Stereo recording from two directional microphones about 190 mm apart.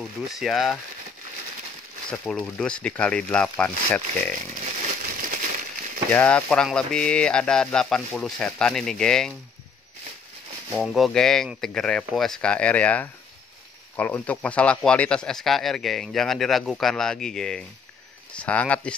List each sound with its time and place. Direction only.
0.4 s speech: centre (ahead or behind)
2.0 s speech: 5° left (ahead or behind)
4.6 s a sound: 40° right (ahead or behind)
6.1 s speech: 10° left (ahead or behind)
10.7 s speech: centre (ahead or behind)